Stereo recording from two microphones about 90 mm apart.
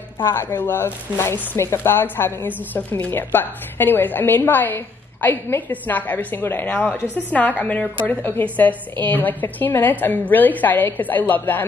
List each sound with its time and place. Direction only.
0.2 s speech: 25° left (ahead or behind)